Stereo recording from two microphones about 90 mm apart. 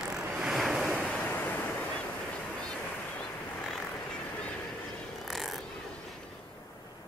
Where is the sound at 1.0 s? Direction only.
15° left (ahead or behind).